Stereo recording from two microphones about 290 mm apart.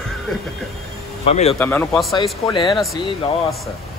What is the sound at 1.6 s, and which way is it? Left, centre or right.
Speech, centre.